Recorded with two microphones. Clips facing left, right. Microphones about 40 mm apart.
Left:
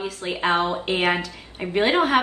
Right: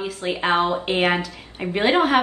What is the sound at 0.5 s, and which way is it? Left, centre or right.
Speech, right.